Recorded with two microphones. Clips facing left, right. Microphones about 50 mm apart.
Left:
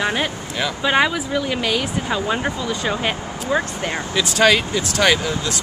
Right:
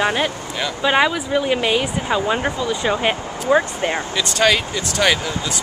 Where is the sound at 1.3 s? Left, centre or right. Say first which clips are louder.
Right 3 dB; centre.